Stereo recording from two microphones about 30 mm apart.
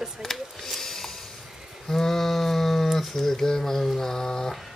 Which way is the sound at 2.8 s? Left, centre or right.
Centre.